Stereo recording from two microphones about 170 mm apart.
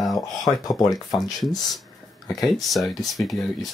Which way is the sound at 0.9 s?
Centre (ahead or behind).